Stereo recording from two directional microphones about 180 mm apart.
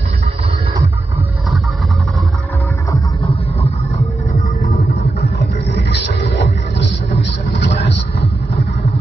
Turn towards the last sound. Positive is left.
turn(degrees=75)  # may be behind; listen again after turning